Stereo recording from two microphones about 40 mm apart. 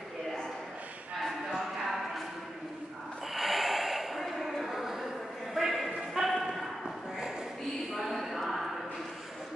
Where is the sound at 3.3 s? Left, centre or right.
Centre.